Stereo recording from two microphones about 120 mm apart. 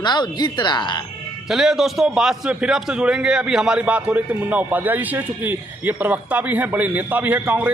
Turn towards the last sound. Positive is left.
turn(degrees=-15)  # may be behind; listen again after turning